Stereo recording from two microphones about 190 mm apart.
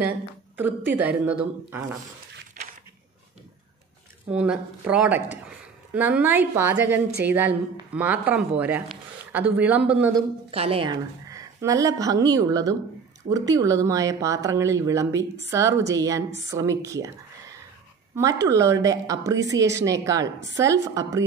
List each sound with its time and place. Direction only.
0.9 s a woman's voice: 10° right (ahead or behind)
2.6 s crushing: 50° right (ahead or behind)
4.3 s a woman's voice: 5° right (ahead or behind)
10.1 s a woman's voice: 30° right (ahead or behind)